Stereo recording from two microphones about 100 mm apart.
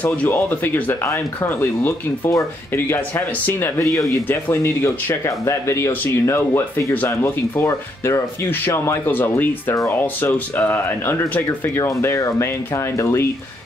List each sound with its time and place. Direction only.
0.0 s speech: 15° left (ahead or behind)